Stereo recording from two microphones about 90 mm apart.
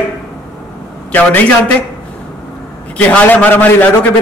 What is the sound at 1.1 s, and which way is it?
Speech, 20° left (ahead or behind).